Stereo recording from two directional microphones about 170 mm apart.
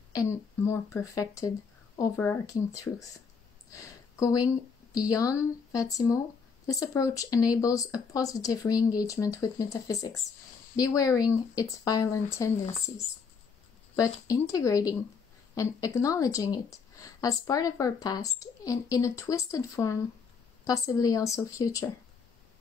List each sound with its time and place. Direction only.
0.1 s speech: 20° left (ahead or behind)
13.9 s speech: 20° left (ahead or behind)